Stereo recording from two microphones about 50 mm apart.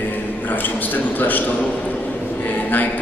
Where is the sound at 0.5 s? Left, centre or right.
Left.